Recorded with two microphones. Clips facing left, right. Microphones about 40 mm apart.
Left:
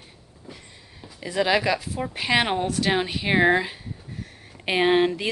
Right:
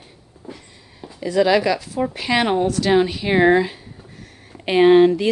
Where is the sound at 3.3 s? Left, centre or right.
Centre.